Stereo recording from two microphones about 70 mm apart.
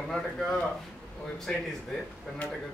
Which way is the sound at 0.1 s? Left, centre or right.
Centre.